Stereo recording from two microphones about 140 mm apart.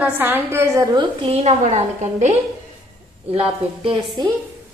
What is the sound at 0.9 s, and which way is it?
Speech, 35° right (ahead or behind).